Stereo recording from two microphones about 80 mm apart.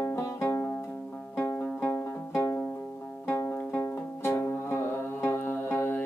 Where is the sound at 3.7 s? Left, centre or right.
Left.